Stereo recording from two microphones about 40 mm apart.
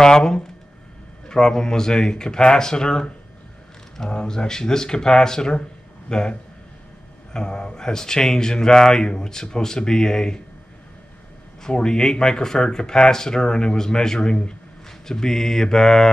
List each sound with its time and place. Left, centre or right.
0.0 s speech: centre
4.1 s a man's voice: left
7.3 s speech: left
11.6 s speech: centre